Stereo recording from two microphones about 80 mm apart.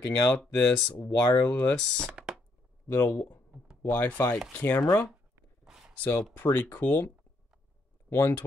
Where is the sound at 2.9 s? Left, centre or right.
Left.